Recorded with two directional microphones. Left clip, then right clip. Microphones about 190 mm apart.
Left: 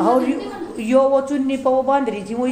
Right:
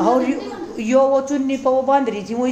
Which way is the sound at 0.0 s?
5° right (ahead or behind).